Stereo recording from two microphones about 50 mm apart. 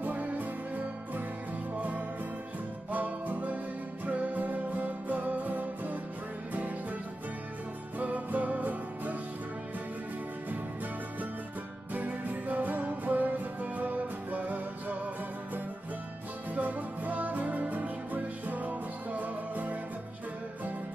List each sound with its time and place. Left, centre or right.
0.0 s music: right
8.0 s music: right
11.9 s music: right
16.5 s music: right